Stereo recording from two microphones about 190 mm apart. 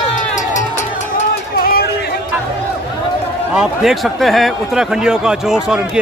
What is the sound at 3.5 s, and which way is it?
Speech, centre (ahead or behind).